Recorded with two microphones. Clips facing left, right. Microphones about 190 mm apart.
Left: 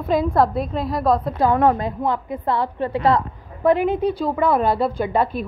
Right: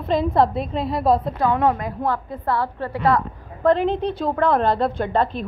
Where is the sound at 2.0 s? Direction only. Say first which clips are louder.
Right 1 dB; 15° left (ahead or behind).